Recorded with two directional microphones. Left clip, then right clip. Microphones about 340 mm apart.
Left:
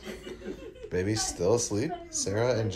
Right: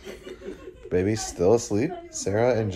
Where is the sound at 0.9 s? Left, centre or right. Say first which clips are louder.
Right 5 dB; centre.